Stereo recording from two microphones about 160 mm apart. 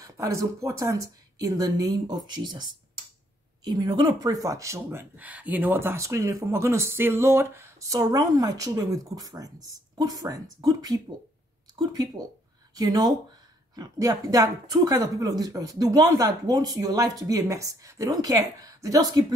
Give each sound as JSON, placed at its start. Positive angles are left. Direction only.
{"t": 0.0, "sound": "speech", "side_deg": -20}